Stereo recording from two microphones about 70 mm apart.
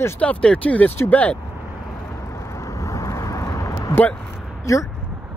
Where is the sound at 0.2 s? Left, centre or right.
Centre.